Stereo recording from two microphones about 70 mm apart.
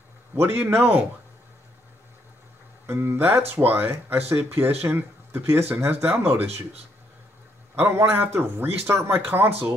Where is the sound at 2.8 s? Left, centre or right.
Right.